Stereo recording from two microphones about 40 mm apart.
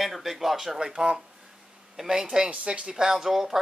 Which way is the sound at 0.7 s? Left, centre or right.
Right.